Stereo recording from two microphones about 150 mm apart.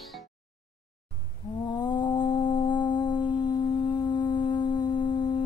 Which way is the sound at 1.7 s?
30° left (ahead or behind).